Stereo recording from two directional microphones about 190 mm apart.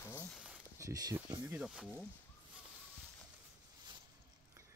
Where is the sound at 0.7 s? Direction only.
20° right (ahead or behind).